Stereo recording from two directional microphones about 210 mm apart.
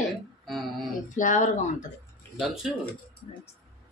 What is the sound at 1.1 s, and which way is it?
Speech, 35° left (ahead or behind).